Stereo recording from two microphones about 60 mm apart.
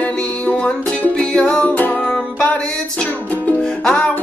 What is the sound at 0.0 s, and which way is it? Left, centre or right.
Music, left.